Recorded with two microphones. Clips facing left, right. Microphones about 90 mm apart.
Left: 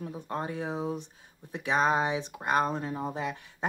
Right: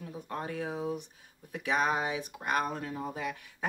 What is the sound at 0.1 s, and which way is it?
Speech, 25° left (ahead or behind).